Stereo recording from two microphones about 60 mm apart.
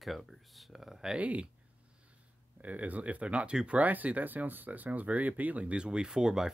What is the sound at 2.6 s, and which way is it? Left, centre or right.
Speech, right.